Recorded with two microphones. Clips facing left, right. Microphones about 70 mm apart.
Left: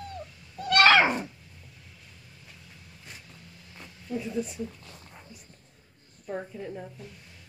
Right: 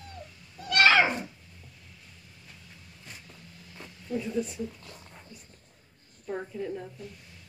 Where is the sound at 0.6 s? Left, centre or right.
Left.